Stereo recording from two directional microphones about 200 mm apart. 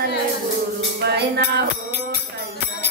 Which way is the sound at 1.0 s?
55° right (ahead or behind).